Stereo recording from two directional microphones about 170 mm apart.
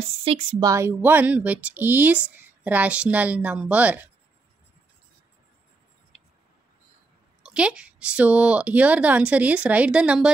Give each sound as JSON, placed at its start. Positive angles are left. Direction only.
{"t": 0.2, "sound": "speech", "side_deg": -35}
{"t": 0.7, "sound": "speech", "side_deg": -15}
{"t": 7.4, "sound": "speech", "side_deg": -5}